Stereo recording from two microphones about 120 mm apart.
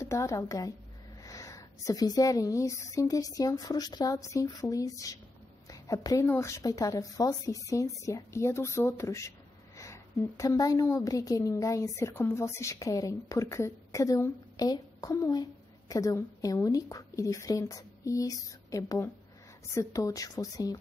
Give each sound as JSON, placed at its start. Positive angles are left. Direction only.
{"t": 0.0, "sound": "a woman's voice", "side_deg": 25}